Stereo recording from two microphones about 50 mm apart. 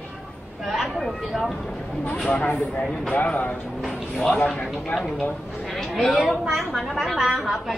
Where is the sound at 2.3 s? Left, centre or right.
Left.